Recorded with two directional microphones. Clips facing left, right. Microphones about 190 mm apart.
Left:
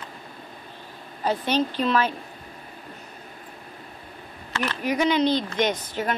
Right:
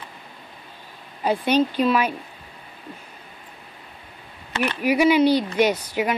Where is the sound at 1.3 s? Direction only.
10° right (ahead or behind).